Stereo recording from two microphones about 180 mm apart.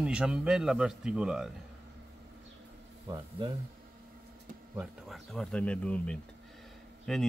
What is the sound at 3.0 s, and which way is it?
Speech, 20° right (ahead or behind).